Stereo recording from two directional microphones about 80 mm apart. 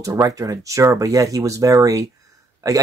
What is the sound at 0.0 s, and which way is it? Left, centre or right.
Speech, right.